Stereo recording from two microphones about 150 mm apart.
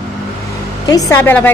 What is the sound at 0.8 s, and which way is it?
Speech, 25° left (ahead or behind).